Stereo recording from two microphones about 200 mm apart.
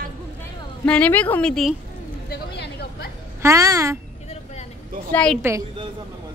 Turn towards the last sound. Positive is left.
turn(degrees=5)  # may be behind; listen again after turning